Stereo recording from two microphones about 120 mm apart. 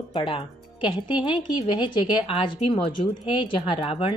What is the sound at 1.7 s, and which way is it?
A woman's voice, 45° left (ahead or behind).